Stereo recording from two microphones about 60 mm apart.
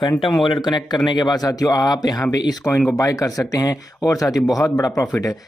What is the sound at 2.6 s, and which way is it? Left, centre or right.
Speech, centre.